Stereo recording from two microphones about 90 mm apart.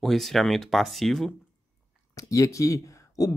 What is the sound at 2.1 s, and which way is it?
Speech, 35° left (ahead or behind).